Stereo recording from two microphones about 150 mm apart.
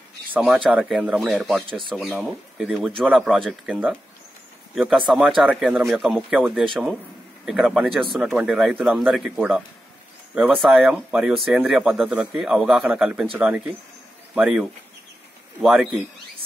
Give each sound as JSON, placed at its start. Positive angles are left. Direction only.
{"t": 0.3, "sound": "speech", "side_deg": -5}
{"t": 1.7, "sound": "speech", "side_deg": -30}
{"t": 2.0, "sound": "speech", "side_deg": 0}